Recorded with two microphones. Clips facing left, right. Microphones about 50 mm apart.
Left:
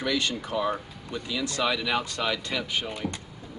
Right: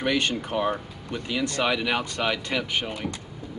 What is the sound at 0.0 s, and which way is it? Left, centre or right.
Speech, right.